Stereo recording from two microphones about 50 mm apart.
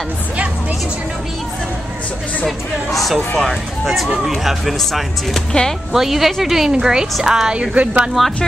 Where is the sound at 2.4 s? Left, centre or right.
Centre; by 8.1 s right.